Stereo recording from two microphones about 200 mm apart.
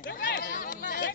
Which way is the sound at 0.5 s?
40° left (ahead or behind).